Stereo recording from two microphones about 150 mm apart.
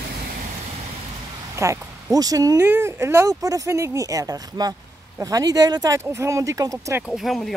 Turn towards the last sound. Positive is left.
turn(degrees=0)  # may be behind; listen again after turning